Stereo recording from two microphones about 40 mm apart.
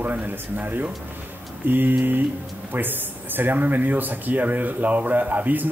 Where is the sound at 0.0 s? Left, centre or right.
Right.